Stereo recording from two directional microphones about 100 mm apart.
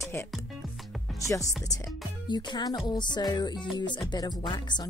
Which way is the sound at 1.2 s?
30° left (ahead or behind).